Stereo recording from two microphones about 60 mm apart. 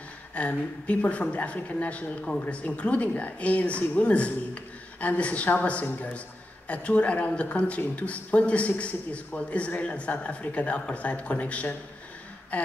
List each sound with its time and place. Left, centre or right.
0.3 s a man's voice: left